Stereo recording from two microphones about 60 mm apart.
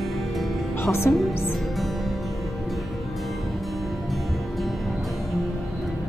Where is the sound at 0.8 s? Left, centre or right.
Left.